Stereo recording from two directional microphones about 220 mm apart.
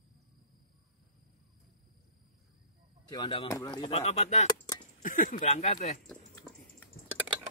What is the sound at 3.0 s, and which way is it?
Speech, 20° left (ahead or behind).